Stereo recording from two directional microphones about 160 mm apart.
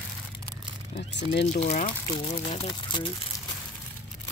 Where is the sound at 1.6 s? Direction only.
45° left (ahead or behind).